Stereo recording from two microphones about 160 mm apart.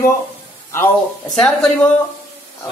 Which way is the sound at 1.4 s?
5° left (ahead or behind).